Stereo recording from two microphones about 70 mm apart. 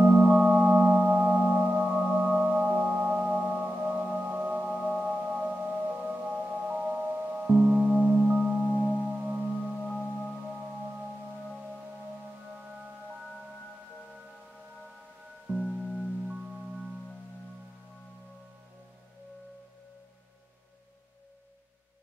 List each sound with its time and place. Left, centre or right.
0.0 s music: centre
5.1 s singing bowl: right
7.0 s gong: centre
8.3 s singing bowl: centre
8.5 s singing bowl: centre
9.1 s singing bowl: centre
9.8 s singing bowl: centre
10.4 s singing bowl: centre
12.5 s music: centre
15.4 s music: centre